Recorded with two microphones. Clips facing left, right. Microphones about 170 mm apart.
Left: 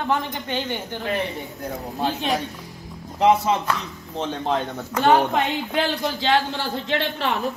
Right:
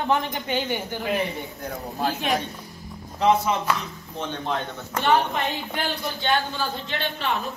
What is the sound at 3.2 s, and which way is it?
Speech, 20° left (ahead or behind).